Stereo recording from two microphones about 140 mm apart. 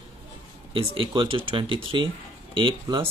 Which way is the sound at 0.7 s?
40° right (ahead or behind).